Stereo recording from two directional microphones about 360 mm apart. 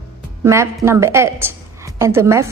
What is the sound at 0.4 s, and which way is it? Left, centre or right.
A woman's voice, centre.